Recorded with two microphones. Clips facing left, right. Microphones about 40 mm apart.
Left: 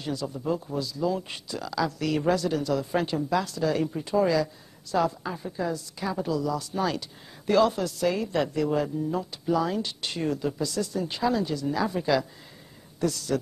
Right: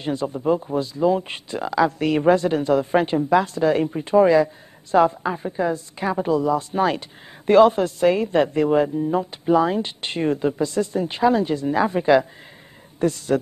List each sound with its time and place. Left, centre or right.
0.0 s a woman's voice: right